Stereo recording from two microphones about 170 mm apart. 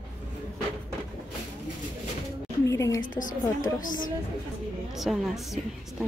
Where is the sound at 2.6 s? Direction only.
20° left (ahead or behind).